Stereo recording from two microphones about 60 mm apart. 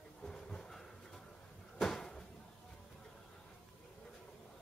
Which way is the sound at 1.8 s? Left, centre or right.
Centre.